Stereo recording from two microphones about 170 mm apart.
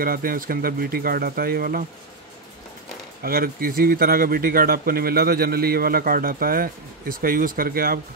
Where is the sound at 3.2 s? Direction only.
60° right (ahead or behind).